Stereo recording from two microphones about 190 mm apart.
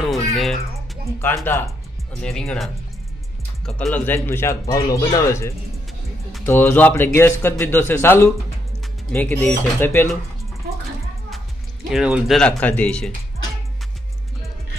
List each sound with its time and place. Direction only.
0.1 s music: centre (ahead or behind)
1.2 s speech: 10° left (ahead or behind)
11.9 s speech: 5° right (ahead or behind)